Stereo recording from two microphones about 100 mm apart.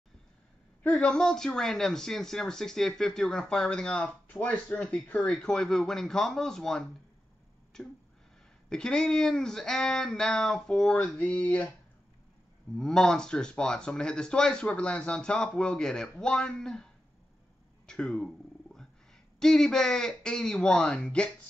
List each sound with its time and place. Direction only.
0.8 s speech: 5° left (ahead or behind)
12.7 s speech: 5° left (ahead or behind)
17.8 s cat: 10° left (ahead or behind)
19.4 s speech: 5° left (ahead or behind)